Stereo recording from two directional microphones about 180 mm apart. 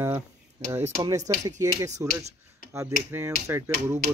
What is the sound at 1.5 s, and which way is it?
Speech, 20° right (ahead or behind).